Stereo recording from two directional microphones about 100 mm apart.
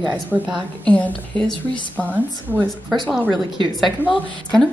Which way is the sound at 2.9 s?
Centre (ahead or behind).